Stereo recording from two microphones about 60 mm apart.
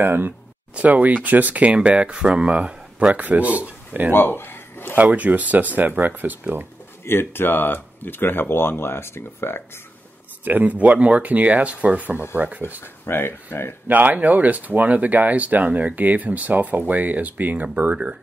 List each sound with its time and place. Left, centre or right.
0.0 s speech: right
4.1 s a sound: left
5.1 s speech: right
7.1 s speech: left
10.4 s speech: right
12.8 s speech: left
13.8 s speech: right